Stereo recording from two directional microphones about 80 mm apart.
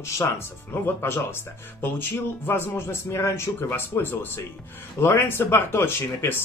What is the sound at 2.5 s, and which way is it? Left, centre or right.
A man's voice, left.